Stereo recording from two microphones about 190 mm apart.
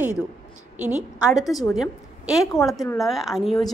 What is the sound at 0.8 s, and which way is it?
A woman's voice, 5° right (ahead or behind).